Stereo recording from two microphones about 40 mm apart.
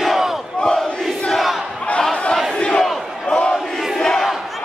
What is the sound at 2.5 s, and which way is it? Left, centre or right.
Crowd, left.